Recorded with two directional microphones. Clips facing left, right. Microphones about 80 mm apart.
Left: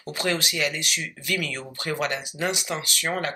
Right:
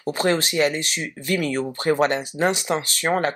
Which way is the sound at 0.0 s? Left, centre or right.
Right.